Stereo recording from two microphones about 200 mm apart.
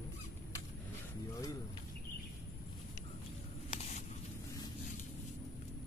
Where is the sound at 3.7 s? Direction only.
35° left (ahead or behind).